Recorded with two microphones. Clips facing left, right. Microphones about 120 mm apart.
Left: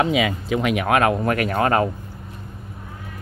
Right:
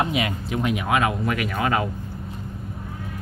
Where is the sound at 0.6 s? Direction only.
75° left (ahead or behind); by 1.9 s 45° left (ahead or behind).